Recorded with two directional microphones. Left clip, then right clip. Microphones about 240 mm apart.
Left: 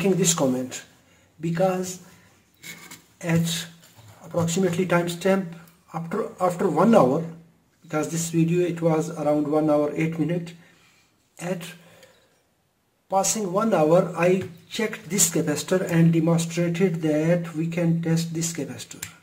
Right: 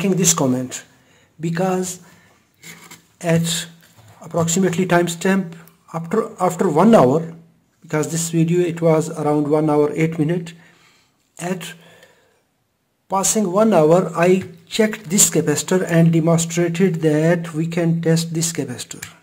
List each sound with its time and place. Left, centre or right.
0.4 s speech: right
3.2 s speech: right
13.1 s speech: right